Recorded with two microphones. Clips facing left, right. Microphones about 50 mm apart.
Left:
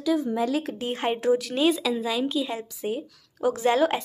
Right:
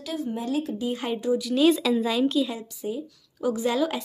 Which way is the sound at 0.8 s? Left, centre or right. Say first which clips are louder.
Left 1 dB; left.